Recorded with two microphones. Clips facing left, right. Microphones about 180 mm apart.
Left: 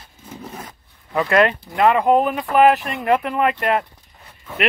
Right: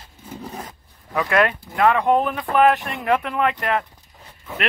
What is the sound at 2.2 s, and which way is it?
Speech, 15° left (ahead or behind).